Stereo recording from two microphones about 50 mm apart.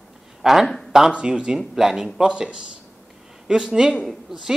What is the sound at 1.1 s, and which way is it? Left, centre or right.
Speech, centre.